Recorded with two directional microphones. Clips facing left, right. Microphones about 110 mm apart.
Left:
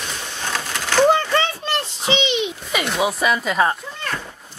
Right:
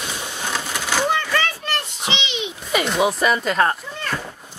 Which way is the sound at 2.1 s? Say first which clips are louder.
Left 7 dB; 45° left (ahead or behind).